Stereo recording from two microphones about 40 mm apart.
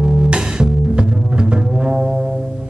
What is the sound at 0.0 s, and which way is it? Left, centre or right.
Double bass, right.